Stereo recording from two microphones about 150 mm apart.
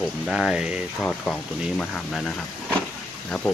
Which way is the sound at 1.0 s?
5° left (ahead or behind).